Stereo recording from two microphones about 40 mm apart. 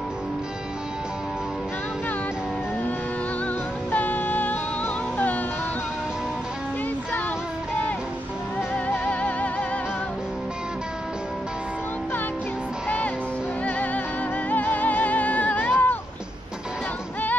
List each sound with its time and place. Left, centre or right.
3.9 s music: left
9.0 s music: left
13.7 s music: left